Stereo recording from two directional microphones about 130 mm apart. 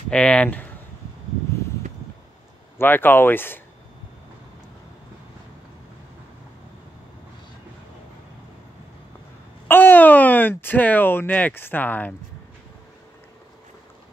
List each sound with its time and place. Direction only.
0.1 s speech: 10° left (ahead or behind)
2.8 s speech: 15° left (ahead or behind)
9.7 s speech: 15° left (ahead or behind)